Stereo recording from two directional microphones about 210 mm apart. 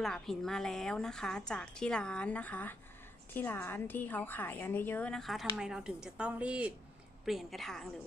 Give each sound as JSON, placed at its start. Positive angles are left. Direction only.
{"t": 0.0, "sound": "a woman's voice", "side_deg": 0}